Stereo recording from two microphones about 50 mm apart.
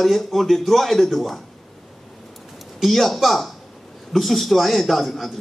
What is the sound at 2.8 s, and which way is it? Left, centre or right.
A man's voice, centre.